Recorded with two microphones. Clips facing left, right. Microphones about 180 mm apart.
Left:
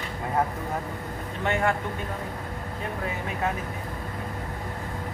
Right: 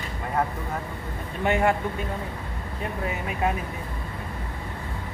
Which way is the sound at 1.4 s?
15° right (ahead or behind).